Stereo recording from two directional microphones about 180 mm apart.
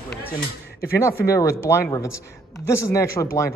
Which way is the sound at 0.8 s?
15° left (ahead or behind).